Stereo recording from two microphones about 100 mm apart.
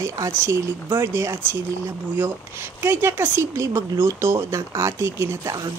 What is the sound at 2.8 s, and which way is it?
Speech, 20° right (ahead or behind).